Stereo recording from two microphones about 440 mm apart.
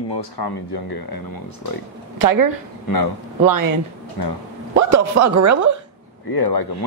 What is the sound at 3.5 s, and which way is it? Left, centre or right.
Speech, right.